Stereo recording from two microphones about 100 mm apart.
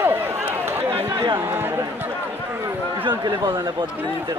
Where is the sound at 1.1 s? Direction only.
50° right (ahead or behind).